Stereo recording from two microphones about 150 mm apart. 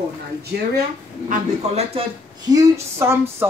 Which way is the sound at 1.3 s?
45° right (ahead or behind).